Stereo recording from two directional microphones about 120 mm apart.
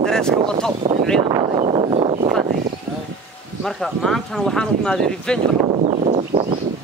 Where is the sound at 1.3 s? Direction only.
40° right (ahead or behind).